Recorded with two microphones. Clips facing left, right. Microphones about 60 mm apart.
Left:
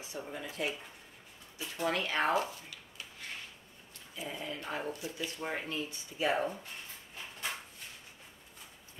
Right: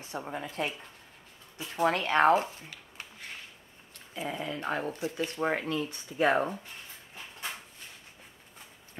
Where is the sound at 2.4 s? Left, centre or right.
Right.